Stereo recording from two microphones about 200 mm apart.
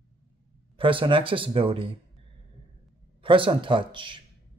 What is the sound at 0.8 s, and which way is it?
Speech, 25° right (ahead or behind).